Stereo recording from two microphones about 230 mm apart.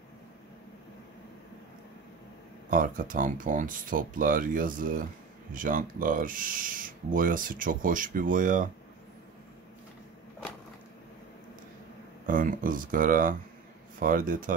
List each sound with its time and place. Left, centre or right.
2.7 s speech: right
12.3 s speech: right